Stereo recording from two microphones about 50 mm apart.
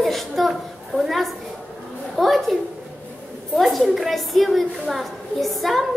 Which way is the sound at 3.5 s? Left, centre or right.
Centre.